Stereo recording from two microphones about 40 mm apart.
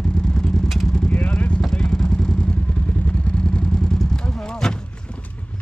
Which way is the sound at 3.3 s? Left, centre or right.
Left.